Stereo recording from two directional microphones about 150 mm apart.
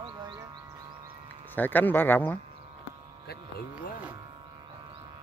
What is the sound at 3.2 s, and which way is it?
Speech, 80° left.